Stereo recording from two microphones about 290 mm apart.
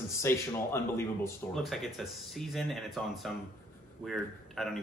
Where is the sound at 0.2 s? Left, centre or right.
Centre.